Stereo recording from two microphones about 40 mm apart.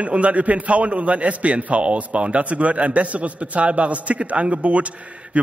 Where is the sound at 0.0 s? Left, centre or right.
Right.